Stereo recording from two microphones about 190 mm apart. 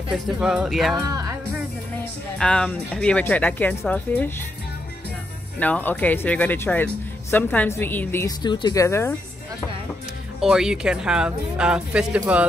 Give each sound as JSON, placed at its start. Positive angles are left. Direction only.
{"t": 0.4, "sound": "speech", "side_deg": -5}
{"t": 1.0, "sound": "speech", "side_deg": -20}
{"t": 2.3, "sound": "speech", "side_deg": 5}
{"t": 5.6, "sound": "speech", "side_deg": 10}
{"t": 10.4, "sound": "speech", "side_deg": -5}